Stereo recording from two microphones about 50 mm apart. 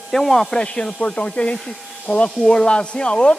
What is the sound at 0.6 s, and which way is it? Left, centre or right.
Speech, centre.